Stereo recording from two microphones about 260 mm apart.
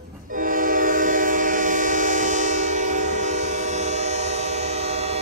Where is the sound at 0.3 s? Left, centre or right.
Right.